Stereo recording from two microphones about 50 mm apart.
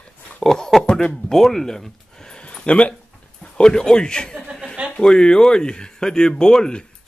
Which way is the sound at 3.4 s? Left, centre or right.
Centre.